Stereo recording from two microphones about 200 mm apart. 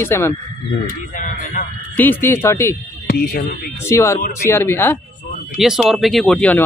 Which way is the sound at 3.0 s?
45° left (ahead or behind).